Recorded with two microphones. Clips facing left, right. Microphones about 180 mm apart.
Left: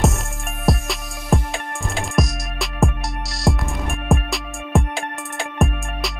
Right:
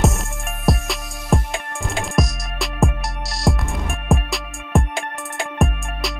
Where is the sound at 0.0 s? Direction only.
Centre (ahead or behind).